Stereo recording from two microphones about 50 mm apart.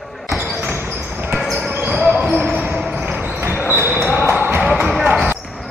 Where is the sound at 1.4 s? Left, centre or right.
Centre.